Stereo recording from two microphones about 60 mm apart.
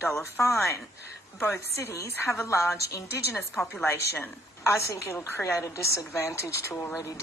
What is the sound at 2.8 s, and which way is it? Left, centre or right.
Speech, left.